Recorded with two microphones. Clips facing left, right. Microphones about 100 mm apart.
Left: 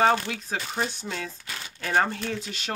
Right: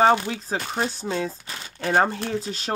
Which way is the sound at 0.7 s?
35° right (ahead or behind).